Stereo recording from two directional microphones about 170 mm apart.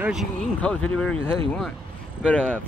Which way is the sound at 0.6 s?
5° left (ahead or behind).